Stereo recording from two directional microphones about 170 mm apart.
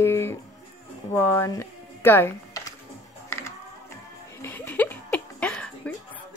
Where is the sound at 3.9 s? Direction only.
15° left (ahead or behind).